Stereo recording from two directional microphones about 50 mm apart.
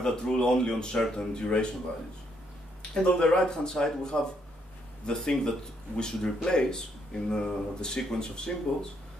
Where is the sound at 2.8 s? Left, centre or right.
Centre.